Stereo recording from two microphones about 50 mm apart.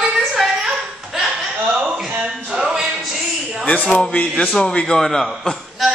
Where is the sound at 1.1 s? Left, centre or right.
Centre.